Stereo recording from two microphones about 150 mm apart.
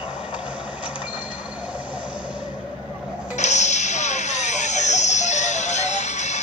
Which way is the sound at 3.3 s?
50° left (ahead or behind).